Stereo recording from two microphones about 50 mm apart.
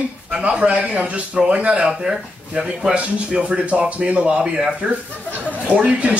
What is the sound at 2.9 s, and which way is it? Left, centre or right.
A man's voice, right.